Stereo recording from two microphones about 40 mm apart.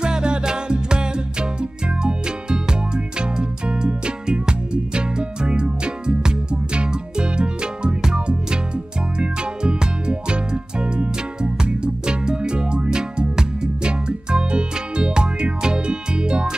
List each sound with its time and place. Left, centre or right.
0.0 s music: right